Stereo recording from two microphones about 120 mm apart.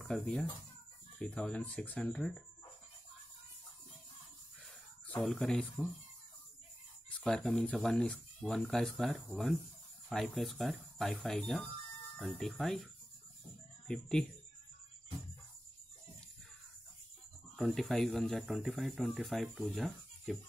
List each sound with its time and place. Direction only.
0.0 s speech: 5° left (ahead or behind)
5.0 s speech: 5° left (ahead or behind)
7.1 s speech: 5° left (ahead or behind)
13.8 s speech: 5° left (ahead or behind)
17.6 s speech: centre (ahead or behind)